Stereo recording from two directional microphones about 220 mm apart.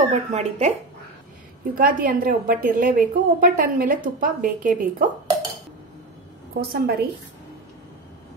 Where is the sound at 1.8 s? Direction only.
40° right (ahead or behind).